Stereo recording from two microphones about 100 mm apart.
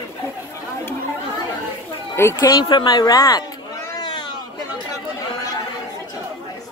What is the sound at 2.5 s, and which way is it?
Speech, 50° left (ahead or behind).